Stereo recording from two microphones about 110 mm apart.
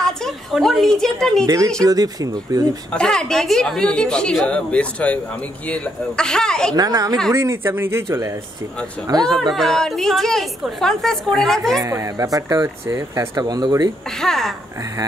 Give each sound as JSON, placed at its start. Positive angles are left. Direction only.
{"t": 0.0, "sound": "a woman's voice", "side_deg": 5}
{"t": 1.4, "sound": "speech", "side_deg": -30}
{"t": 2.9, "sound": "a woman's voice", "side_deg": 5}
{"t": 6.7, "sound": "speech", "side_deg": -35}
{"t": 9.1, "sound": "speech", "side_deg": -40}
{"t": 9.4, "sound": "a woman's voice", "side_deg": 5}
{"t": 11.8, "sound": "speech", "side_deg": -30}
{"t": 14.2, "sound": "a woman's voice", "side_deg": 5}